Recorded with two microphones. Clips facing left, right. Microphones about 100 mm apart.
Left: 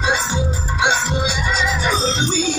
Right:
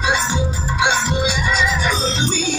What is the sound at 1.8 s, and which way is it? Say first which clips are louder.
Music: left 1 dB; 35° left (ahead or behind).